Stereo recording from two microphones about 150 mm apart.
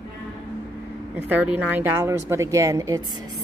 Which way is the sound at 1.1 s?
10° right (ahead or behind).